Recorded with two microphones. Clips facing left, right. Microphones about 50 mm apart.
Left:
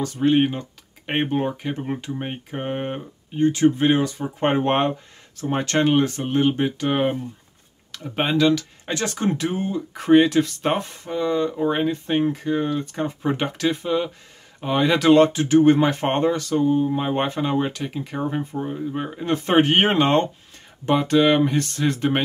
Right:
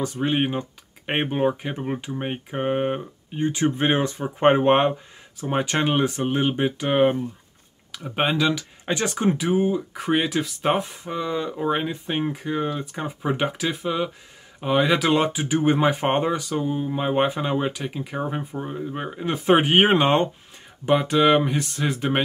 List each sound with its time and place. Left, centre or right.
0.0 s speech: centre